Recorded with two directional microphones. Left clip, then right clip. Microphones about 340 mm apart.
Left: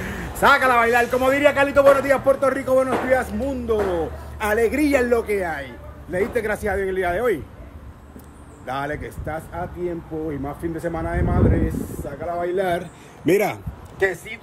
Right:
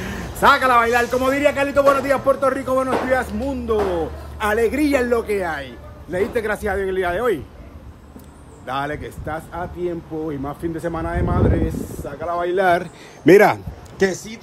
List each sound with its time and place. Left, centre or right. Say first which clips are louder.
0.0 s a man's voice: right 2 dB; centre
8.6 s a man's voice: right 2 dB; centre
13.2 s speech: right 8 dB; right